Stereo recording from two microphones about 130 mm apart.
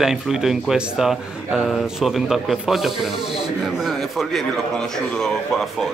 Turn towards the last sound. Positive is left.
turn(degrees=0)  # may be behind; listen again after turning